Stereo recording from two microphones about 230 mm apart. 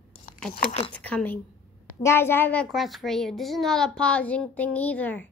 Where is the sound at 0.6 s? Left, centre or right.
Left.